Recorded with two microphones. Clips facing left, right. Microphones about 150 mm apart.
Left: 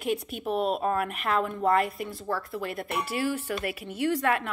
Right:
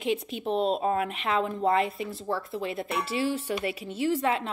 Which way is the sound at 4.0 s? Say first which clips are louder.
Even; 65° left (ahead or behind).